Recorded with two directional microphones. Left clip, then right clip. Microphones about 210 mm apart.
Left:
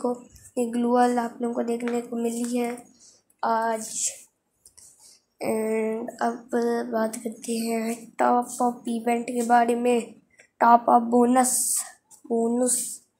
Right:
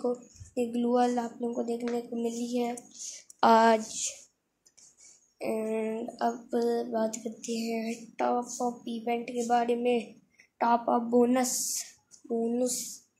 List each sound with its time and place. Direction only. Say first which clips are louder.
0.0 s speech: left 3 dB; 5° left (ahead or behind)
3.0 s speech: right 4 dB; 45° right (ahead or behind)
5.4 s speech: left 6 dB; 5° left (ahead or behind)